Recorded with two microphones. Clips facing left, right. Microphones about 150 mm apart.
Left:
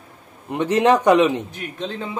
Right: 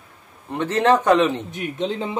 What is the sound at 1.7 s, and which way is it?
Speech, 20° right (ahead or behind).